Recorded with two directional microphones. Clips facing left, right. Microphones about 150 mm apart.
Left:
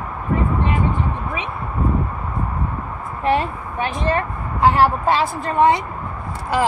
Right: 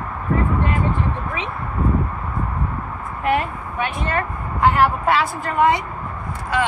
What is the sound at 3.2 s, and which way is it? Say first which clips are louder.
A woman's voice: left 1 dB; 30° left (ahead or behind).